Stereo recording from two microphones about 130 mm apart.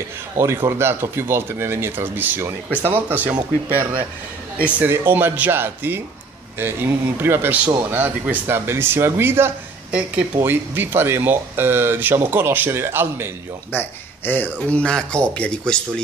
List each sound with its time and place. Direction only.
0.4 s speech: 20° right (ahead or behind)
13.7 s speech: 15° left (ahead or behind)